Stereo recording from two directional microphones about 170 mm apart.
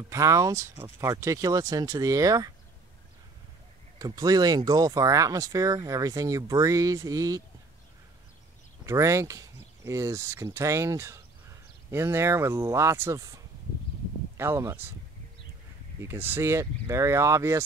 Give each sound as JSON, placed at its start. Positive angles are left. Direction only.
{"t": 0.1, "sound": "speech", "side_deg": -20}
{"t": 4.0, "sound": "speech", "side_deg": -20}
{"t": 8.8, "sound": "speech", "side_deg": -20}
{"t": 16.0, "sound": "speech", "side_deg": -15}